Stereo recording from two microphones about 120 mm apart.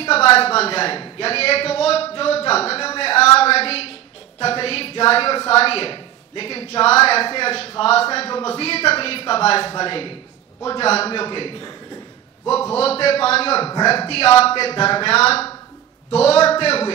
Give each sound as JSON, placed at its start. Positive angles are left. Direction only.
{"t": 0.0, "sound": "a man's voice", "side_deg": 55}
{"t": 3.0, "sound": "a sound", "side_deg": 60}
{"t": 4.4, "sound": "a woman's voice", "side_deg": 55}
{"t": 12.7, "sound": "a woman's voice", "side_deg": 55}